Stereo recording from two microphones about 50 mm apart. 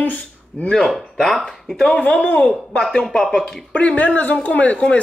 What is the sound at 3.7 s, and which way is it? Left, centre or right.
Speech, left.